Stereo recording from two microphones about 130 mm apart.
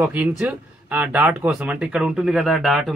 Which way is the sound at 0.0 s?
10° right (ahead or behind).